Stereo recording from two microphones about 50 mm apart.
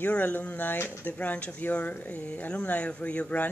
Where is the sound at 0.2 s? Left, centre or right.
Left.